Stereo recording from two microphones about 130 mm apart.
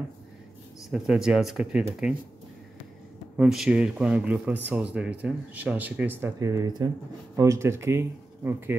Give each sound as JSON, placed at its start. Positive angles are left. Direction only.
{"t": 0.8, "sound": "speech", "side_deg": -5}
{"t": 3.3, "sound": "speech", "side_deg": -5}
{"t": 6.4, "sound": "speech", "side_deg": -25}